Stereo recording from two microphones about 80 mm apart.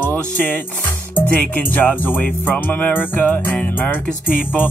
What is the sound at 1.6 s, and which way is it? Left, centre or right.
Music, left.